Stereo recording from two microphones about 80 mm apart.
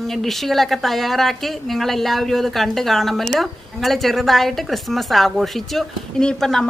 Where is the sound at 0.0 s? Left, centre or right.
Centre.